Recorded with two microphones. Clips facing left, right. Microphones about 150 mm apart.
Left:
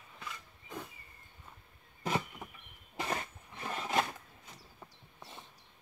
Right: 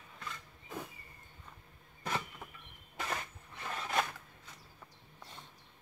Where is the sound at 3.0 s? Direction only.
20° left (ahead or behind).